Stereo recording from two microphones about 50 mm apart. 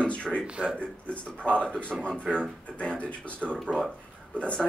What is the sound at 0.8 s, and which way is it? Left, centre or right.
A man's voice, left.